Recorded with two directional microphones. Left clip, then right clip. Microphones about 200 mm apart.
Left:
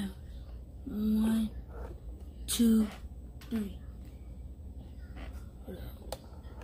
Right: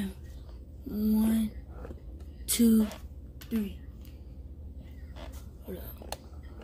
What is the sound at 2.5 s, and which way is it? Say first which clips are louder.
A woman's voice: right 3 dB; 35° right (ahead or behind).